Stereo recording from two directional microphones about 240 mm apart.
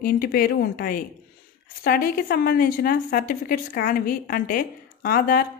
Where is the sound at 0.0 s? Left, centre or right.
Left.